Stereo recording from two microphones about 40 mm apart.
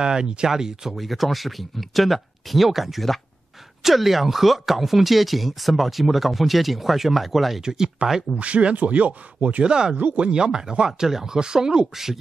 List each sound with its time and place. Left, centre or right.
0.0 s speech: right
0.9 s speech: centre
7.6 s speech: centre
8.4 s speech: right
9.7 s speech: right